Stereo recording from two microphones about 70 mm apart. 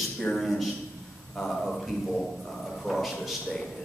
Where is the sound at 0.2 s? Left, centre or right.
Centre.